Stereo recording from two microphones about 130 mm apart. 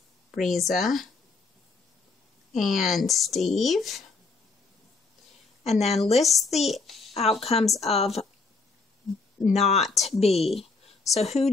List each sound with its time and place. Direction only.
0.4 s speech: centre (ahead or behind)
2.5 s speech: centre (ahead or behind)
5.6 s a woman's voice: 55° left (ahead or behind)
6.1 s a child's voice: centre (ahead or behind)
7.2 s a woman's voice: 50° left (ahead or behind)
9.4 s a woman's voice: 60° left (ahead or behind)